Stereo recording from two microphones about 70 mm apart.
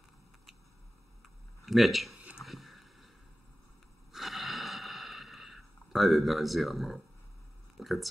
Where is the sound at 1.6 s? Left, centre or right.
Centre.